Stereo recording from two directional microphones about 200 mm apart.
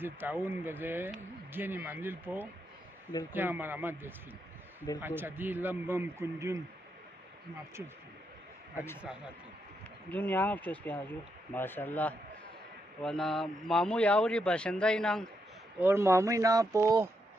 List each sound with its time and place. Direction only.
0.0 s a man's voice: 10° right (ahead or behind)
8.7 s speech: 10° left (ahead or behind)
10.1 s speech: 10° left (ahead or behind)
15.8 s a man's voice: 15° right (ahead or behind)